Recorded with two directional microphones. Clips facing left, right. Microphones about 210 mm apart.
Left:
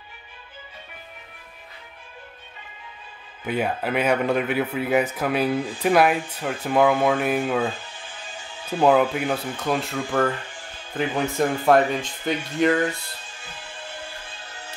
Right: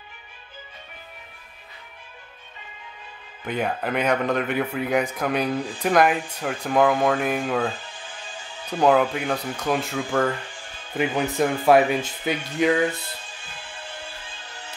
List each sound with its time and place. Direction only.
3.4 s speech: 5° left (ahead or behind)